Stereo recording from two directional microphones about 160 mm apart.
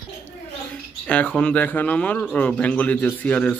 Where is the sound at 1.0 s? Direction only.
10° left (ahead or behind).